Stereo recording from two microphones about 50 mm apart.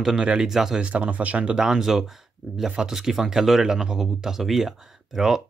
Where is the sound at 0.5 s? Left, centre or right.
Centre.